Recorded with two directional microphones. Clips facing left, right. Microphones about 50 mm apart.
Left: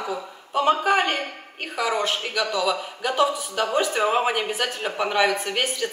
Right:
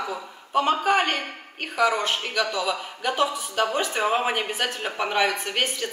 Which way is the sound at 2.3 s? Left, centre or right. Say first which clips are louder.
Left 3 dB; centre.